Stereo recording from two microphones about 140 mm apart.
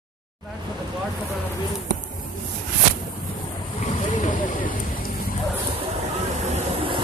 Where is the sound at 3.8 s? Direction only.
65° left (ahead or behind); by 5.3 s 90° left.